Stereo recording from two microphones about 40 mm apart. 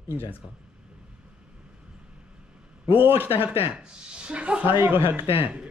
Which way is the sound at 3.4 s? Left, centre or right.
Right.